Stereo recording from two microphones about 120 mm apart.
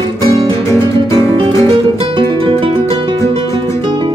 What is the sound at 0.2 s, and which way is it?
Music, 25° left (ahead or behind).